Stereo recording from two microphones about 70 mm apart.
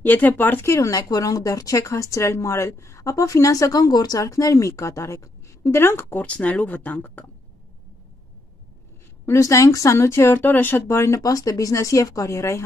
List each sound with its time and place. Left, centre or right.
0.0 s speech: left
0.7 s speech: left
6.2 s speech: centre
9.2 s speech: left
9.9 s speech: left
11.1 s speech: left